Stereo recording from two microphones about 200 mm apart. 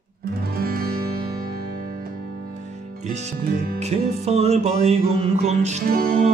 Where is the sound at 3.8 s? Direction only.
30° right (ahead or behind).